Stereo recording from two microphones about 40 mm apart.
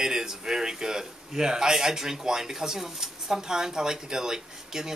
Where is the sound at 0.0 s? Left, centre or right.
Centre.